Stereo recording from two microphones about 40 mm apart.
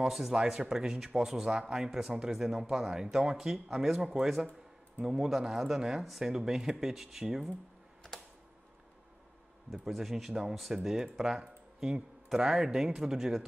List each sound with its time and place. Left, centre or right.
0.0 s speech: centre
0.3 s speech: centre
9.7 s speech: centre